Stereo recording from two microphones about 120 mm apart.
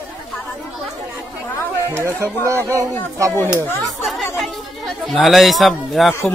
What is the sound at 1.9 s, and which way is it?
Speech, 25° right (ahead or behind).